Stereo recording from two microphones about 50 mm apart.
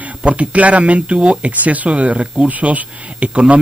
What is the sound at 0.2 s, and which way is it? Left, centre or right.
Speech, right.